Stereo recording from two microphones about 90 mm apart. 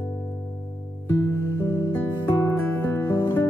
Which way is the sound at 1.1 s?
30° left (ahead or behind).